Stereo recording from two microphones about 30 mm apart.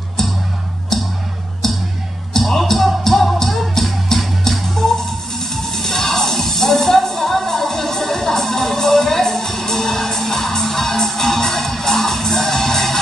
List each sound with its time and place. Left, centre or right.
0.2 s music: centre
1.6 s music: centre
5.7 s music: centre